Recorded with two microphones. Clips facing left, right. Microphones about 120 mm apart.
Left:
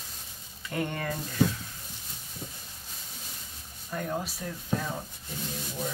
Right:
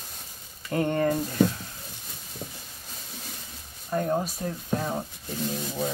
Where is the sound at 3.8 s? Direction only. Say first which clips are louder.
Right 7 dB; 40° right (ahead or behind).